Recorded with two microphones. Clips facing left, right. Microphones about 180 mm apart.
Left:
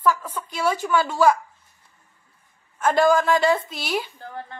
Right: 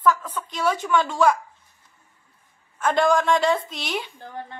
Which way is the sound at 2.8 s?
5° left (ahead or behind).